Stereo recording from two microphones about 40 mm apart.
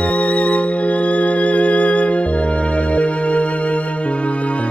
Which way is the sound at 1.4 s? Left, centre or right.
Left.